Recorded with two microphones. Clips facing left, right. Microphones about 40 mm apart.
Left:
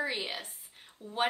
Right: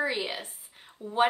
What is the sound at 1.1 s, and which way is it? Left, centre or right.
Speech, right.